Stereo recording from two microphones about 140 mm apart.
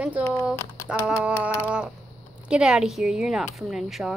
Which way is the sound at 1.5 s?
15° left (ahead or behind).